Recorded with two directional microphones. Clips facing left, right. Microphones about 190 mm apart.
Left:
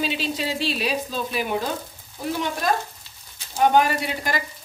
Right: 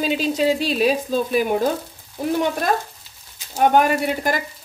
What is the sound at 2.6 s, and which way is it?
Frying, 55° right (ahead or behind).